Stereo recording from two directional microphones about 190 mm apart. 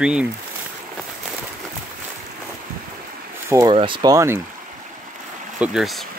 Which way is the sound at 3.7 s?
25° right (ahead or behind).